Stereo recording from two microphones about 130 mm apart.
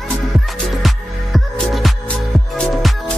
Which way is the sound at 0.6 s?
Centre (ahead or behind).